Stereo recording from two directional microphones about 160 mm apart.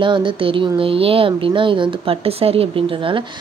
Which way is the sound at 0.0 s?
30° right (ahead or behind).